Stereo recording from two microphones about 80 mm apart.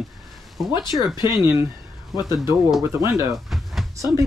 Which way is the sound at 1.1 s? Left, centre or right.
Left.